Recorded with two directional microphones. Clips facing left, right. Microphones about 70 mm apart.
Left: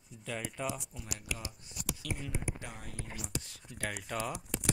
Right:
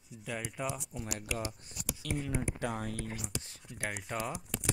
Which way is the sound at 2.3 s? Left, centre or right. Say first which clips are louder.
Right 6 dB; right.